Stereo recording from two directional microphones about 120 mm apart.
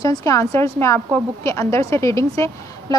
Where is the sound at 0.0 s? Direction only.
30° left (ahead or behind).